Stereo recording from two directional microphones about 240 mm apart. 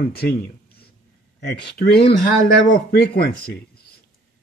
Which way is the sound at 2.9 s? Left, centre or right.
Left.